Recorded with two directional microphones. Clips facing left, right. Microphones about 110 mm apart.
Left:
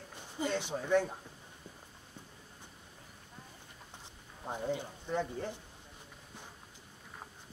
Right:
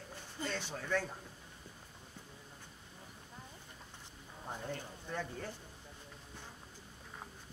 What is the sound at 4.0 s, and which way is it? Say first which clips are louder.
Speech: left 3 dB; 20° left (ahead or behind).